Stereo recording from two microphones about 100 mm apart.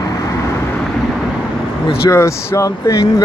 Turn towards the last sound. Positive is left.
turn(degrees=35)  # may be behind; listen again after turning